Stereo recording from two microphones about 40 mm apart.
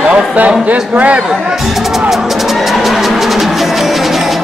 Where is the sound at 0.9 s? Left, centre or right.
Right.